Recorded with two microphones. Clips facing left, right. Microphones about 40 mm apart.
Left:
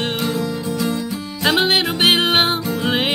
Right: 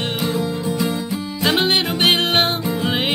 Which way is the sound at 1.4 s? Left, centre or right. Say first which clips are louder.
Left 2 dB; centre.